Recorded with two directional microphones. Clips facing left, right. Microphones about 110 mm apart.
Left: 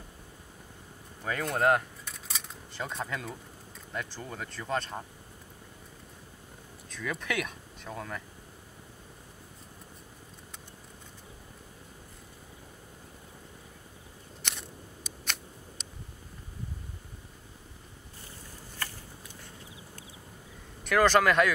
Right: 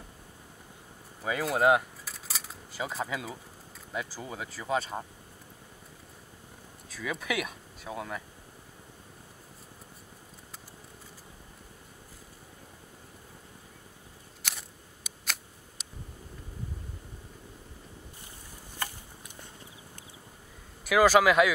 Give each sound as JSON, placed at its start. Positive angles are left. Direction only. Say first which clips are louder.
{"t": 1.2, "sound": "speech", "louder": "right 2 dB", "side_deg": -5}
{"t": 6.9, "sound": "speech", "louder": "right 1 dB", "side_deg": -5}
{"t": 14.4, "sound": "scissors", "louder": "left 1 dB", "side_deg": -5}
{"t": 15.8, "sound": "a sound", "louder": "left 1 dB", "side_deg": -5}
{"t": 18.8, "sound": "a sound", "louder": "right 3 dB", "side_deg": -20}
{"t": 20.8, "sound": "speech", "louder": "right 2 dB", "side_deg": -5}